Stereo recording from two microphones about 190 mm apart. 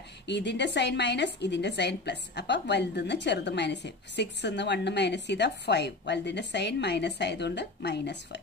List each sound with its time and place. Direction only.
0.3 s a woman's voice: 65° left (ahead or behind)